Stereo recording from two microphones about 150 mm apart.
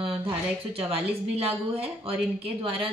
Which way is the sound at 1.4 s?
40° right (ahead or behind).